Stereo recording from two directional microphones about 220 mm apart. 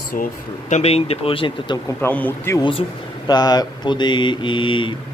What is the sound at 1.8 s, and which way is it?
Speech, 10° left (ahead or behind).